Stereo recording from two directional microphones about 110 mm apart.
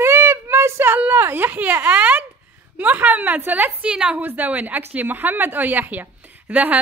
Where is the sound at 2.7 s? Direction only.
15° right (ahead or behind).